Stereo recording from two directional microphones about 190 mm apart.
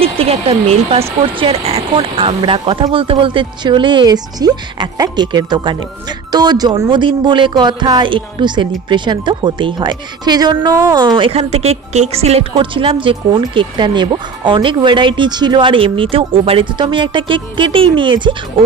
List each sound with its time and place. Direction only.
0.0 s speech: 30° right (ahead or behind)